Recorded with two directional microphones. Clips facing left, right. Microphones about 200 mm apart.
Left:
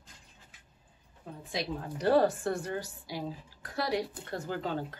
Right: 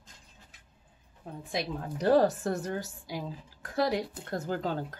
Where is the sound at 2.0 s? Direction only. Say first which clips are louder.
Right 1 dB; 40° right (ahead or behind).